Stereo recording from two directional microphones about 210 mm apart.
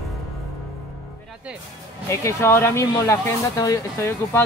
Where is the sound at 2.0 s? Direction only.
10° left (ahead or behind).